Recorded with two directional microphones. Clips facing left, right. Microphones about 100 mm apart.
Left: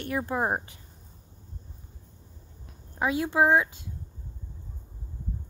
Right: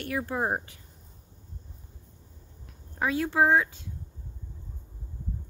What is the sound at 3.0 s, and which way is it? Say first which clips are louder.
Speech: left 1 dB; 20° left (ahead or behind).